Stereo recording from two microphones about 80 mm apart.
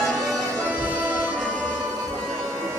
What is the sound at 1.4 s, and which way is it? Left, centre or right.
Music, centre.